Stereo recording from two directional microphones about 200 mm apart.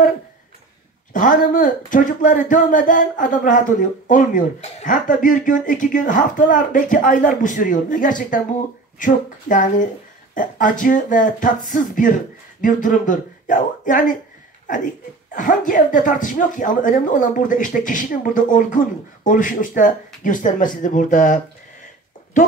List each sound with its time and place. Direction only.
1.1 s speech: 40° left (ahead or behind)
15.3 s speech: 40° left (ahead or behind)